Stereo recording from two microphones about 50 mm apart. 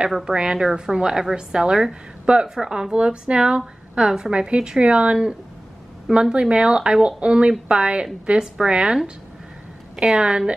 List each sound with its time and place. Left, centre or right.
0.2 s a woman's voice: centre
6.3 s a woman's voice: centre